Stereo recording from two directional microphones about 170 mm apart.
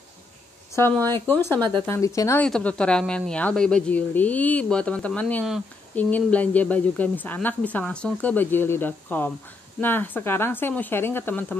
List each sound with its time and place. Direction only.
0.7 s speech: 15° left (ahead or behind)
2.4 s speech: 5° left (ahead or behind)